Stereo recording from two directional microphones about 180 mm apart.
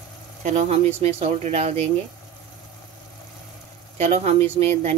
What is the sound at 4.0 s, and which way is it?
Speech, 35° right (ahead or behind).